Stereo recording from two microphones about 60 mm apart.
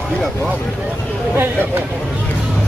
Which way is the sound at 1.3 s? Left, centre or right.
Right.